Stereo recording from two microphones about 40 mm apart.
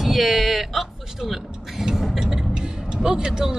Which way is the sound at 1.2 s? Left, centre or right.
Centre.